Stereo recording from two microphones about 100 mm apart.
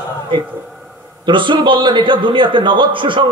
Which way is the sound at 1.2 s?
55° right (ahead or behind).